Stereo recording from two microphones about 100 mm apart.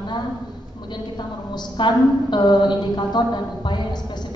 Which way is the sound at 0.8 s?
50° left (ahead or behind).